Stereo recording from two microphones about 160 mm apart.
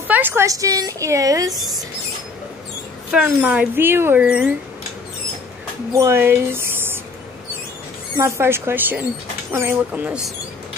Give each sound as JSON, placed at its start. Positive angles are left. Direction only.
{"t": 0.1, "sound": "a woman's voice", "side_deg": -15}
{"t": 3.1, "sound": "a woman's voice", "side_deg": -10}
{"t": 5.9, "sound": "speech", "side_deg": -15}
{"t": 8.2, "sound": "a woman's voice", "side_deg": -15}